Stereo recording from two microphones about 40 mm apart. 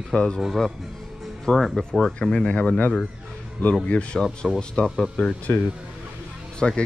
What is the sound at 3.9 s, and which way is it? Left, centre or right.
Speech, left.